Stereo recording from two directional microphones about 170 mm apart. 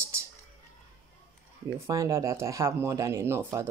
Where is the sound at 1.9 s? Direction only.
20° right (ahead or behind).